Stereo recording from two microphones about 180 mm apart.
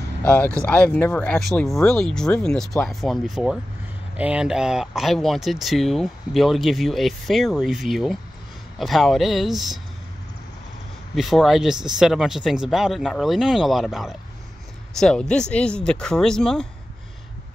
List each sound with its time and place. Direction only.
0.2 s speech: 10° left (ahead or behind)
11.1 s speech: centre (ahead or behind)